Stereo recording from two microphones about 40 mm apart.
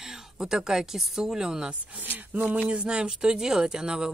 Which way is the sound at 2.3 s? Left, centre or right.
Right.